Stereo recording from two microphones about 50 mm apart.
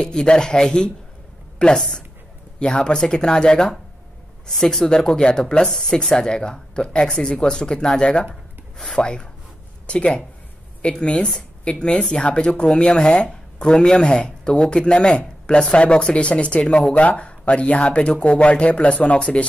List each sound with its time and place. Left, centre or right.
0.0 s speech: centre
8.7 s speech: centre
9.0 s speech: centre